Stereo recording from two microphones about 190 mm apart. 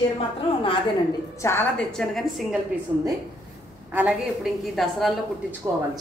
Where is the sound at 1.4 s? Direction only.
10° left (ahead or behind).